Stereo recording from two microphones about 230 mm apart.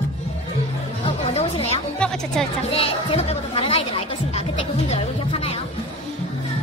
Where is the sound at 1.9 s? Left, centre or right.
Centre.